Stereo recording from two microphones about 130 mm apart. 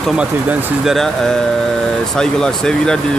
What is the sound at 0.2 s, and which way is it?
Speech, 10° right (ahead or behind).